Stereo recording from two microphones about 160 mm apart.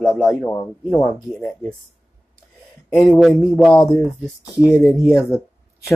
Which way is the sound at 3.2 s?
Centre (ahead or behind).